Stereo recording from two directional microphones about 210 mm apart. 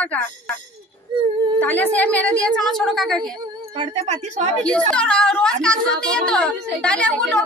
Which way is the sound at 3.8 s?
30° right (ahead or behind).